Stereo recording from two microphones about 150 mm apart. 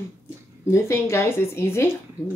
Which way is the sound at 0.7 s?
20° left (ahead or behind).